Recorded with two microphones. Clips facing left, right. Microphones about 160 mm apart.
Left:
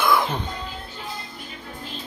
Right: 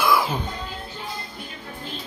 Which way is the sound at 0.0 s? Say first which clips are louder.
Even; 5° right (ahead or behind).